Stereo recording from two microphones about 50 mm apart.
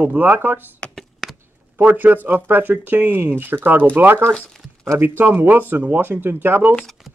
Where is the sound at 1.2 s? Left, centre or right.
Centre.